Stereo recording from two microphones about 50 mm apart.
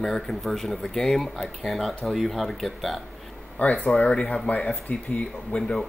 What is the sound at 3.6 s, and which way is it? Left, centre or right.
Speech, left.